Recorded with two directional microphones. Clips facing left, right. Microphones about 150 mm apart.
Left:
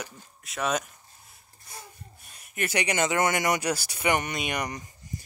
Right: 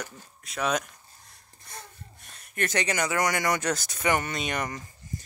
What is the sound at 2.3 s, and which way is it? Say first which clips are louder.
Speech: even; 10° left (ahead or behind).